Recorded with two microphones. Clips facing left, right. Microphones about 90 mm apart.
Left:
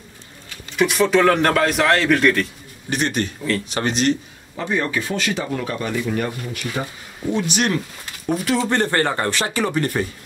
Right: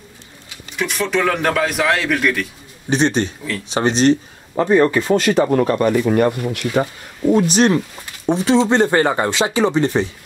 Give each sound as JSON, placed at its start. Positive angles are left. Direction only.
{"t": 0.7, "sound": "a man's voice", "side_deg": 0}
{"t": 2.9, "sound": "speech", "side_deg": -25}
{"t": 7.3, "sound": "speech", "side_deg": -35}